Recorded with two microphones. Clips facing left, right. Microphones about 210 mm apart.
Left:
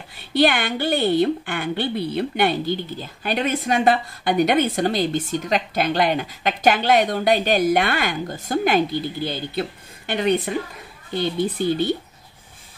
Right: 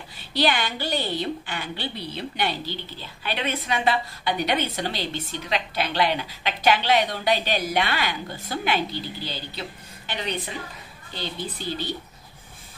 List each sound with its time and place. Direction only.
0.3 s a woman's voice: 55° left (ahead or behind)